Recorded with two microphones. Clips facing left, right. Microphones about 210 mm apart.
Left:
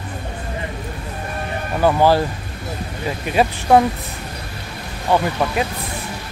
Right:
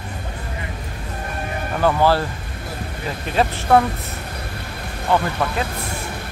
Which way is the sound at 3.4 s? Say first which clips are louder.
Left 2 dB; 15° left (ahead or behind).